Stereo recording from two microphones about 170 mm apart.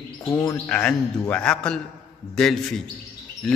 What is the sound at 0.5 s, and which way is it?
A man's voice, 5° left (ahead or behind).